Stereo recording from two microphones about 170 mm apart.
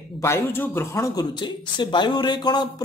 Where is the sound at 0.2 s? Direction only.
15° left (ahead or behind).